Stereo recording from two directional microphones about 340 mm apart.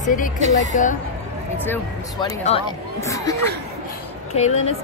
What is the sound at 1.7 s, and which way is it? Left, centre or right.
A woman's voice, centre.